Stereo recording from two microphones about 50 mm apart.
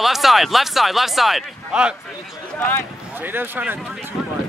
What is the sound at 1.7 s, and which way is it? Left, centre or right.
Speech, centre.